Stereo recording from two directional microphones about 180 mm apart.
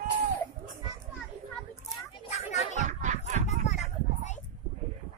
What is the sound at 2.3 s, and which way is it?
Music, 40° left (ahead or behind).